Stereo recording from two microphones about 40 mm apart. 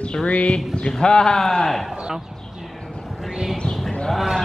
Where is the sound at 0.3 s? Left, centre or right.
Left.